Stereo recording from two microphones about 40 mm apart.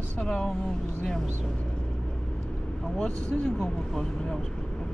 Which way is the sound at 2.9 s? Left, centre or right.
Centre.